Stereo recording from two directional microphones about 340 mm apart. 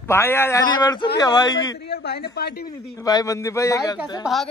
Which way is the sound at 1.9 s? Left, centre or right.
Left.